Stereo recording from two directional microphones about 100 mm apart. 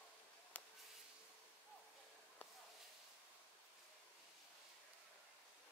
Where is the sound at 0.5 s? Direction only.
15° left (ahead or behind).